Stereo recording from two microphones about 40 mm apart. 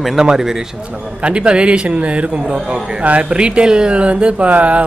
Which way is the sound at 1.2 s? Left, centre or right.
Right.